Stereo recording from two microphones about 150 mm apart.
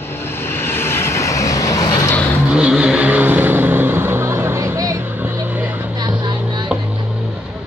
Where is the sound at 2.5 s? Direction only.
5° right (ahead or behind).